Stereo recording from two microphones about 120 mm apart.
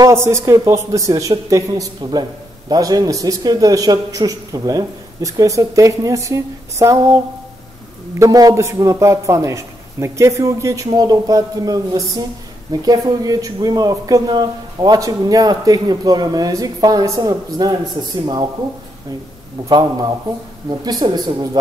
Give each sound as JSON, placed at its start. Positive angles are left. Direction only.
{"t": 0.0, "sound": "a man's voice", "side_deg": -25}
{"t": 19.7, "sound": "a man's voice", "side_deg": -30}